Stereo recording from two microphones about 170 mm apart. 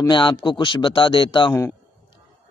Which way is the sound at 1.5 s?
15° left (ahead or behind).